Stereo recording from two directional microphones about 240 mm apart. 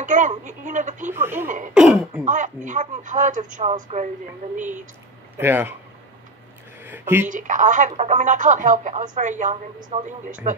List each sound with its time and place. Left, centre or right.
0.0 s speech: right
1.1 s speech: centre
2.2 s speech: right
5.4 s speech: centre
6.8 s speech: centre
7.2 s speech: right
9.8 s speech: centre
10.0 s speech: right